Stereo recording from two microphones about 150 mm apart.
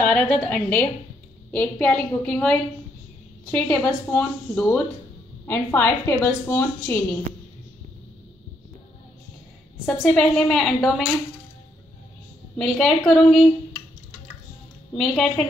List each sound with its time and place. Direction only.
0.0 s a woman's voice: 10° left (ahead or behind)
9.8 s a woman's voice: 5° left (ahead or behind)
12.5 s a woman's voice: centre (ahead or behind)
15.0 s a woman's voice: 5° left (ahead or behind)